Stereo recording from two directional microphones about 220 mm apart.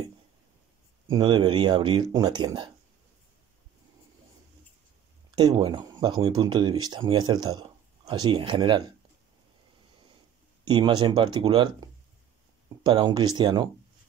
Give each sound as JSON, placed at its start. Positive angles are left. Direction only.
{"t": 1.1, "sound": "speech", "side_deg": -20}
{"t": 5.3, "sound": "speech", "side_deg": -20}
{"t": 10.6, "sound": "speech", "side_deg": -20}